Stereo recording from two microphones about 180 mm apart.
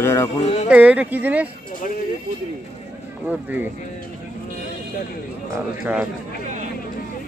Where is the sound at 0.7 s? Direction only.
10° right (ahead or behind).